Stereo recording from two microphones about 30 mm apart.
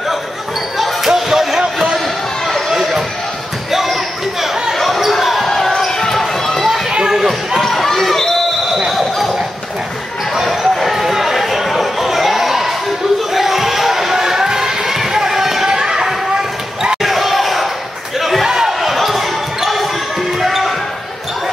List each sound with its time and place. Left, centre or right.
0.7 s basketball bounce: centre
2.7 s music: centre
3.7 s a sound: centre
4.7 s basketball bounce: centre
5.9 s basketball bounce: centre
7.1 s basketball bounce: centre
7.6 s basketball bounce: centre
10.3 s a sound: centre
17.0 s basketball bounce: centre
18.2 s a sound: centre
18.5 s a sound: centre
18.8 s basketball bounce: centre